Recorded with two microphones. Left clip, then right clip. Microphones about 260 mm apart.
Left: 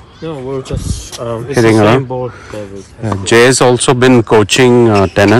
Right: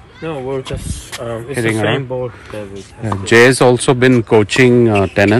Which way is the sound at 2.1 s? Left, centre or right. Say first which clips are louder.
Left 2 dB; centre.